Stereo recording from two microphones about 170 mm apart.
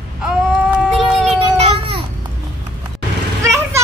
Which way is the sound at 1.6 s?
35° right (ahead or behind).